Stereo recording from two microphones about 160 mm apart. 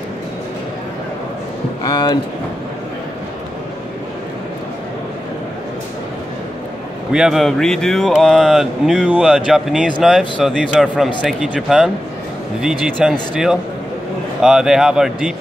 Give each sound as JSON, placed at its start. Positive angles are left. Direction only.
{"t": 1.9, "sound": "speech", "side_deg": 25}
{"t": 7.1, "sound": "speech", "side_deg": -5}